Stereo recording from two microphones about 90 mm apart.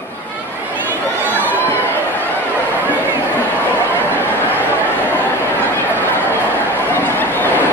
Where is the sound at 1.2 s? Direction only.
20° left (ahead or behind).